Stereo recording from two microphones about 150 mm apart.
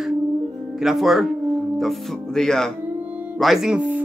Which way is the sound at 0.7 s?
Centre (ahead or behind).